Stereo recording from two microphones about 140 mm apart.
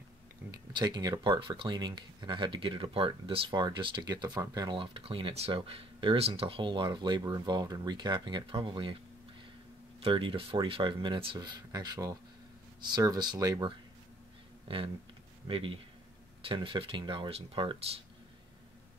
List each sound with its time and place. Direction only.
0.5 s speech: 30° right (ahead or behind)
10.0 s speech: 40° right (ahead or behind)
15.4 s speech: 40° right (ahead or behind)